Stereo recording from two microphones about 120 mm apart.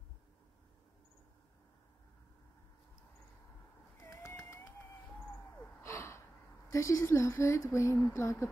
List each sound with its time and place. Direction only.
4.0 s bird: 20° left (ahead or behind)
5.8 s gasp: 25° left (ahead or behind)
6.7 s speech: 25° left (ahead or behind)